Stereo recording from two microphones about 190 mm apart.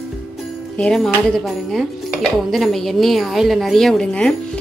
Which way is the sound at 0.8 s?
5° left (ahead or behind).